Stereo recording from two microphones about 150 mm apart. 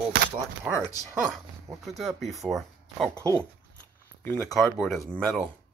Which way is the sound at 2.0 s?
Centre (ahead or behind).